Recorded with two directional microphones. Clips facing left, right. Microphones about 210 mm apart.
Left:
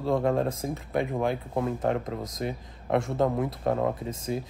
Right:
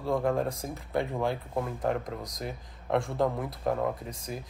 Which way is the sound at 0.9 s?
20° left (ahead or behind).